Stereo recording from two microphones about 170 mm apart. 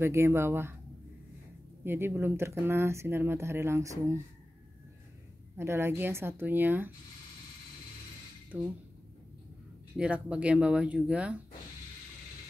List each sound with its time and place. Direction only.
0.0 s speech: 15° right (ahead or behind)
1.9 s speech: 15° right (ahead or behind)
5.6 s speech: 15° right (ahead or behind)
8.5 s speech: 5° right (ahead or behind)
9.9 s speech: 5° right (ahead or behind)